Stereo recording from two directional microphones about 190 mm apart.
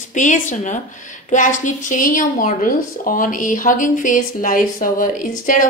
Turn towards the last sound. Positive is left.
turn(degrees=45)  # may be behind; listen again after turning